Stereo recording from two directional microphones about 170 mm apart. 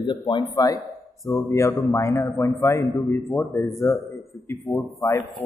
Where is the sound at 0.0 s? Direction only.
25° left (ahead or behind).